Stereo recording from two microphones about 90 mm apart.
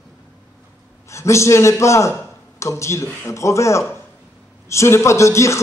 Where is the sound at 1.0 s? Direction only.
35° left (ahead or behind).